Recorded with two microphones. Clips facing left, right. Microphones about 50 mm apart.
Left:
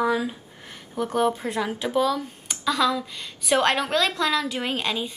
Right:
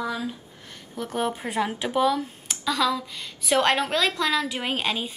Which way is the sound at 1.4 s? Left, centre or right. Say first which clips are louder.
Even; right.